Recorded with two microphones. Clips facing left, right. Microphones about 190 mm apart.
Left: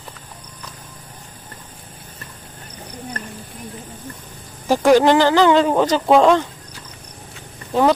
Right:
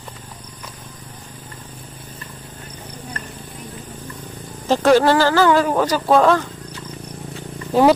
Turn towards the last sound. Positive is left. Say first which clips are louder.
# right 2 dB
turn(degrees=-5)  # may be behind; listen again after turning